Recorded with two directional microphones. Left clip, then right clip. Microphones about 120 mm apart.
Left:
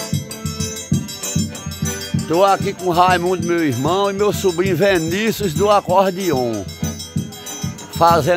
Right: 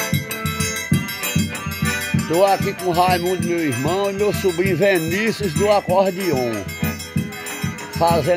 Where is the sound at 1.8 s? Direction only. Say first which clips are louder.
Right 3 dB; 20° left (ahead or behind).